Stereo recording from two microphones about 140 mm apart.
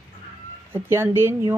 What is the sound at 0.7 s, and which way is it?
Speech, 15° right (ahead or behind).